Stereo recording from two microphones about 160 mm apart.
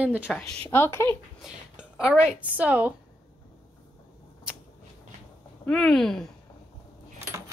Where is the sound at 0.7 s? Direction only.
15° left (ahead or behind).